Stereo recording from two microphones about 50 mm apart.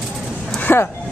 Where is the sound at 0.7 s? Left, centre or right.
Left.